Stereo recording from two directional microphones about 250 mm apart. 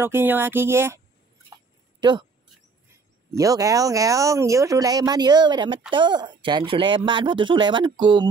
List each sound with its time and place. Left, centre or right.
0.0 s speech: centre
2.0 s a sound: centre
3.3 s speech: centre